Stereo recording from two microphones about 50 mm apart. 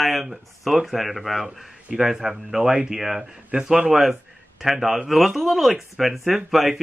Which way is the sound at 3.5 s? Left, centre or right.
Right.